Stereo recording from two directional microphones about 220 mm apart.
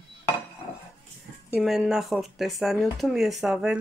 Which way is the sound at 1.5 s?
Centre (ahead or behind).